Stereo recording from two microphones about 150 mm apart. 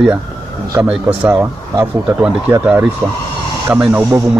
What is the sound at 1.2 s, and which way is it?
Speech, 15° right (ahead or behind).